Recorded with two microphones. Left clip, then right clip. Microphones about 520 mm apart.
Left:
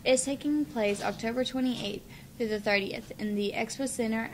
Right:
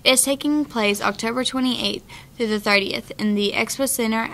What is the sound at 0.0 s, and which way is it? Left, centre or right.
A woman's voice, right.